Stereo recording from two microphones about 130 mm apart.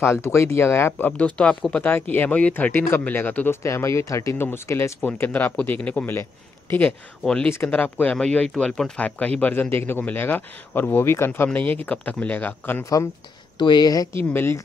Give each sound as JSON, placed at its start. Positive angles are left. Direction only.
{"t": 0.0, "sound": "speech", "side_deg": 20}
{"t": 13.6, "sound": "speech", "side_deg": 35}
{"t": 14.3, "sound": "speech", "side_deg": 15}